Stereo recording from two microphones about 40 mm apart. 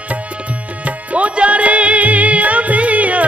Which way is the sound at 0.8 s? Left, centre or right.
Right.